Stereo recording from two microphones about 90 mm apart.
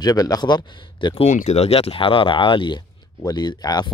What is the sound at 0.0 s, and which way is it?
Speech, 45° left (ahead or behind).